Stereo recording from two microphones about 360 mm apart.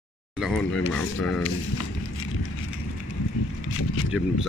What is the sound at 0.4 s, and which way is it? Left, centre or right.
Speech, centre.